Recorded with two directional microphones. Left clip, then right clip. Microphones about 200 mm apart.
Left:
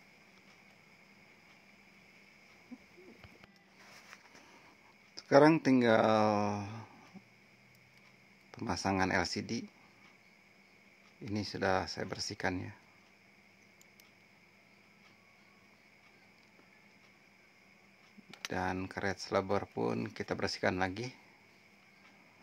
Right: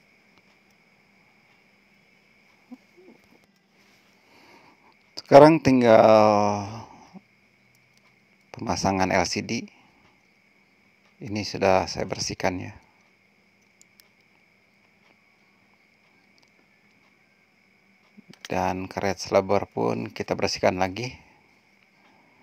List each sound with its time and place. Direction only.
5.1 s a sound: 35° right (ahead or behind)
5.6 s speech: 35° right (ahead or behind)
8.5 s speech: 30° right (ahead or behind)
11.2 s speech: 30° right (ahead or behind)
18.5 s speech: 30° right (ahead or behind)